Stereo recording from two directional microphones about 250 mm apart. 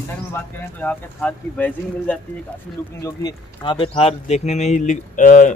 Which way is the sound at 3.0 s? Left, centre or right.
Centre.